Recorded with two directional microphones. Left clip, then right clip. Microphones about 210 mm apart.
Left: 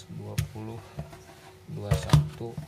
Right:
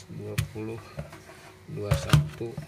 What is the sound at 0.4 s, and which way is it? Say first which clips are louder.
Speech: right 4 dB; 5° left (ahead or behind).